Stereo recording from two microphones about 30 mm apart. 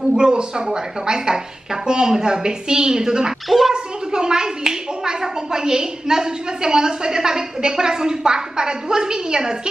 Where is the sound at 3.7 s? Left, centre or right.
Right.